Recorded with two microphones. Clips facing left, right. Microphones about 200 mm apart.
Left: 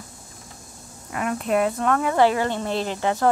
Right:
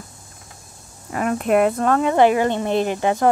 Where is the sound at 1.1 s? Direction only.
40° right (ahead or behind).